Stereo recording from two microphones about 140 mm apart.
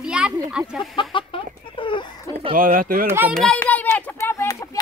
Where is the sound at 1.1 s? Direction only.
35° left (ahead or behind).